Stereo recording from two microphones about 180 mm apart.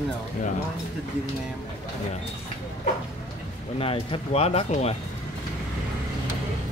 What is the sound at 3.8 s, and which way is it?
Speech, 30° left (ahead or behind).